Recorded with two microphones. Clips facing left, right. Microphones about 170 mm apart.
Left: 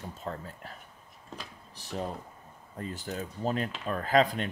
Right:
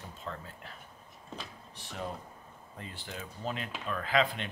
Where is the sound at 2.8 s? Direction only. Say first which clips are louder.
Left 8 dB; 45° left (ahead or behind).